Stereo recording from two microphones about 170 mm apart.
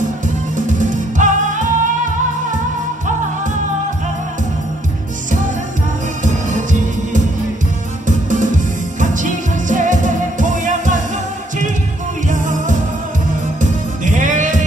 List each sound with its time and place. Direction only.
0.6 s music: 50° right (ahead or behind)
6.2 s music: 50° right (ahead or behind)
8.3 s music: 50° right (ahead or behind)
12.3 s music: 50° right (ahead or behind)